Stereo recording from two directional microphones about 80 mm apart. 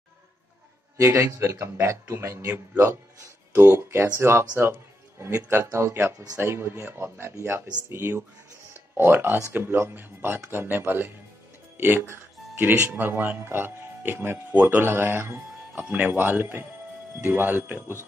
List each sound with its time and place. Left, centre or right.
0.9 s a man's voice: right
15.8 s speech: centre